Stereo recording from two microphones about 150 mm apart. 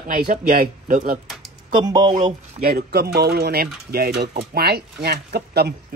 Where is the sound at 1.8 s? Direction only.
25° right (ahead or behind).